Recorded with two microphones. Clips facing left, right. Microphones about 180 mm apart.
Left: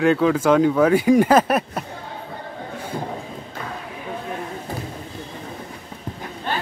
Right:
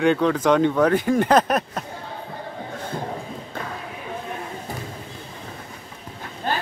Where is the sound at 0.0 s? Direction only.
5° left (ahead or behind).